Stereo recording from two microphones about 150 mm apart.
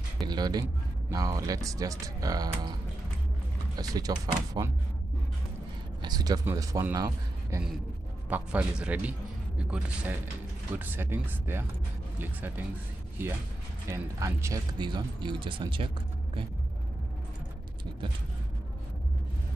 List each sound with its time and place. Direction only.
0.2 s speech: 25° right (ahead or behind)
3.7 s speech: 25° right (ahead or behind)
6.0 s speech: 25° right (ahead or behind)
8.3 s a man's voice: 10° right (ahead or behind)
13.8 s speech: 20° right (ahead or behind); by 15.9 s 35° right (ahead or behind)